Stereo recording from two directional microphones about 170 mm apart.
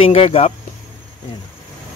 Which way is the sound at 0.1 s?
35° left (ahead or behind).